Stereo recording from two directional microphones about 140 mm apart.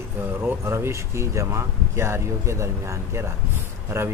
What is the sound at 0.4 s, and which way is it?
Speech, 15° right (ahead or behind).